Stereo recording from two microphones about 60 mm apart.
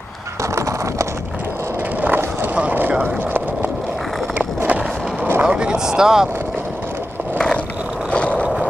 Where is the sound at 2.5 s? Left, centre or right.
Right.